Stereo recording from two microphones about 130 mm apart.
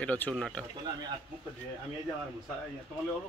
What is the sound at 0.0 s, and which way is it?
Speech, 10° left (ahead or behind).